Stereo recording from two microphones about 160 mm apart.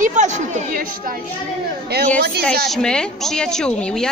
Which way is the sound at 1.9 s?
90° right.